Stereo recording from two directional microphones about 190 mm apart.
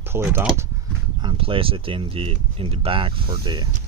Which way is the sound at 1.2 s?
30° right (ahead or behind).